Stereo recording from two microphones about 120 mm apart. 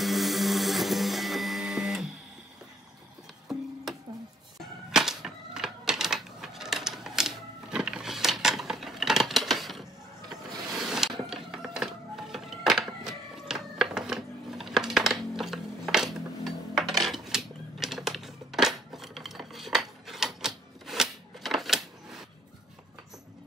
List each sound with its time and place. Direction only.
0.0 s printer: centre (ahead or behind)
4.9 s typewriter: 5° right (ahead or behind)
10.7 s a sound: 5° right (ahead or behind)
18.9 s dishes: centre (ahead or behind)